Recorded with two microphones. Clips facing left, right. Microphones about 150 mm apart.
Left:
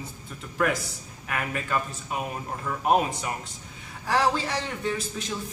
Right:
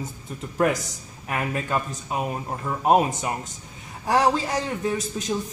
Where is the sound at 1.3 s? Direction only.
30° right (ahead or behind).